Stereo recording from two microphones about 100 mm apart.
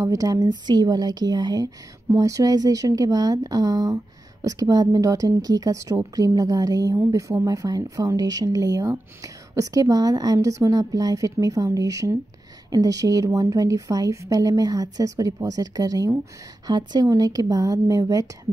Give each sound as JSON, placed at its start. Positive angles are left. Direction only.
{"t": 0.0, "sound": "speech", "side_deg": -35}
{"t": 2.0, "sound": "speech", "side_deg": -35}